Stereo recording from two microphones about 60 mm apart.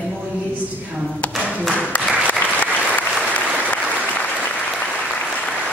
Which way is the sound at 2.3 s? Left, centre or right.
Left.